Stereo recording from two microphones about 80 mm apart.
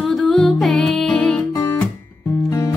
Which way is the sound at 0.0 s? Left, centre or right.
Centre.